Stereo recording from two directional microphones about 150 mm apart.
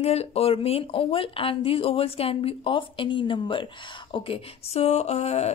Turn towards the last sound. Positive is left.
turn(degrees=45)  # may be behind; listen again after turning